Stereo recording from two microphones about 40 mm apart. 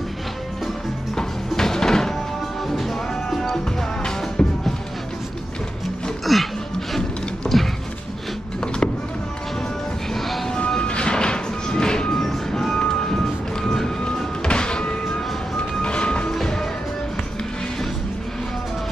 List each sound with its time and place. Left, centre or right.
1.5 s music: centre
6.3 s music: centre
7.0 s a sound: centre
10.1 s music: centre
10.8 s music: left
16.3 s music: centre